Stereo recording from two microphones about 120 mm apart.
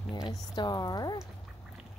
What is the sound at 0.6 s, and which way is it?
Speech, 35° left (ahead or behind).